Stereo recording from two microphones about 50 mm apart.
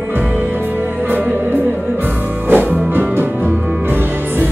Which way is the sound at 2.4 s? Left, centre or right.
Right.